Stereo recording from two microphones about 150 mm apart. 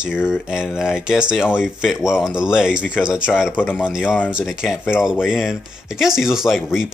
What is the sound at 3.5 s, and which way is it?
Speech, 10° left (ahead or behind).